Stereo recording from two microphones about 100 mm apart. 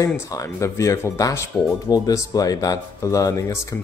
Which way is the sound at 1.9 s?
40° left (ahead or behind).